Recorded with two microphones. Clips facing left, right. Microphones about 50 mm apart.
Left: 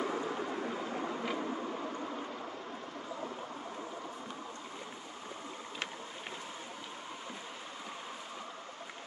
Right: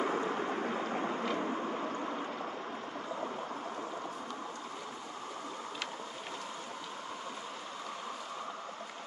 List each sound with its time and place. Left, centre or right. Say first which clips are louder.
0.0 s vehicle: right 3 dB; right